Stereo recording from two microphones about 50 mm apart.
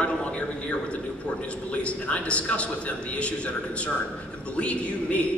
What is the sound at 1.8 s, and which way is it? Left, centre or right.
Speech, left.